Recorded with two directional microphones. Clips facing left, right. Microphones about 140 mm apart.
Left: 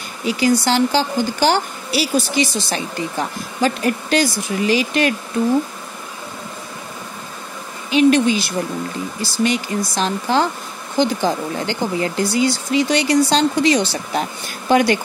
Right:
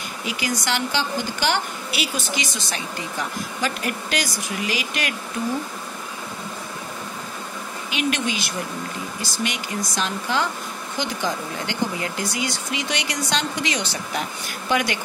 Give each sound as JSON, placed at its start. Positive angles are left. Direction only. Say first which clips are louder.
{"t": 0.2, "sound": "a woman's voice", "louder": "left 11 dB", "side_deg": 35}
{"t": 7.9, "sound": "a woman's voice", "louder": "left 12 dB", "side_deg": 35}